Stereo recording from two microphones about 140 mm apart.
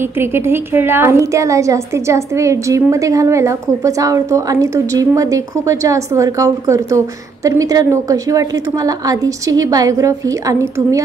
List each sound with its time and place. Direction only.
0.0 s a woman's voice: 15° right (ahead or behind)